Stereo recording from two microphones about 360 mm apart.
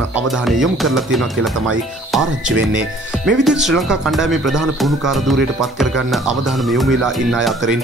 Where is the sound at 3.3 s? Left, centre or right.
Centre.